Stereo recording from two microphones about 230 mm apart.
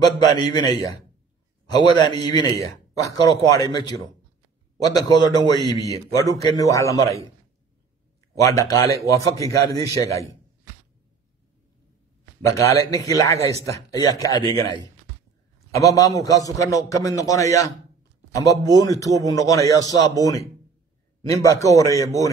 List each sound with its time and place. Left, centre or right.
0.0 s a man's voice: centre
8.4 s a man's voice: centre
12.4 s a man's voice: centre
13.5 s speech: right
13.8 s a man's voice: centre
21.2 s a man's voice: centre